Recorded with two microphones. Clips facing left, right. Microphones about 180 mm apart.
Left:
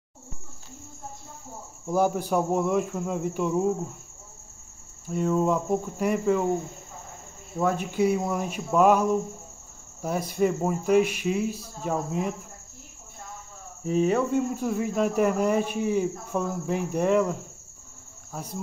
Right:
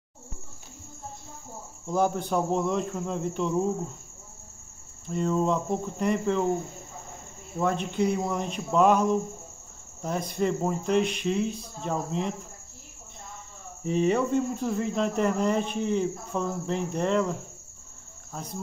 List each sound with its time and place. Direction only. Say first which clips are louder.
1.9 s speech: left 2 dB; 10° left (ahead or behind)
5.0 s speech: left 2 dB; 5° left (ahead or behind)
7.5 s speech: left 1 dB; 5° left (ahead or behind)
13.8 s speech: left 1 dB; 5° left (ahead or behind)